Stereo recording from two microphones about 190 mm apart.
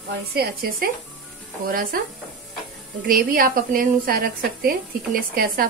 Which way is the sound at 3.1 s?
50° right (ahead or behind).